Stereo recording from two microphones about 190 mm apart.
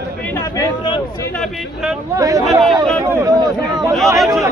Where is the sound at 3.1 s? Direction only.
15° right (ahead or behind).